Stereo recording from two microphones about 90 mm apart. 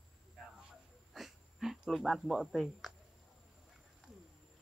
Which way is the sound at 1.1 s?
Centre (ahead or behind).